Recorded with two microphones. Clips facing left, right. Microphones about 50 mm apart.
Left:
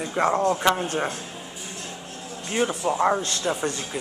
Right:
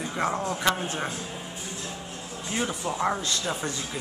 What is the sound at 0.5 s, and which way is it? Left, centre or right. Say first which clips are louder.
Speech: left 4 dB; centre.